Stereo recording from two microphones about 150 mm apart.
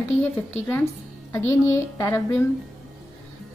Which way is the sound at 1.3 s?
20° left (ahead or behind).